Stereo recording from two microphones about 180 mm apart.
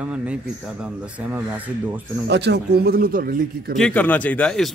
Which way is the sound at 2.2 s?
70° right (ahead or behind).